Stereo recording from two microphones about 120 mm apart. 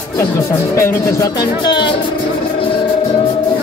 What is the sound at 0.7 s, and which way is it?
Speech, 25° left (ahead or behind).